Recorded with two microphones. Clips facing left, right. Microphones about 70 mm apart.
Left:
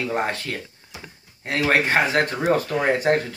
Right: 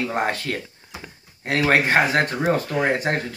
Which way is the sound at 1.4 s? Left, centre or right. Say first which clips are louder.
Right 2 dB; right.